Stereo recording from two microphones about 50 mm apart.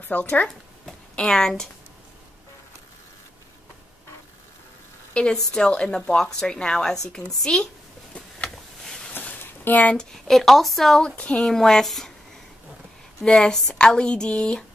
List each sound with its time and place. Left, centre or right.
0.1 s speech: left
1.2 s speech: centre
5.1 s speech: centre
7.5 s speech: left
9.1 s a sound: left
10.1 s a woman's voice: centre
11.0 s speech: centre
11.3 s speech: centre
13.2 s speech: centre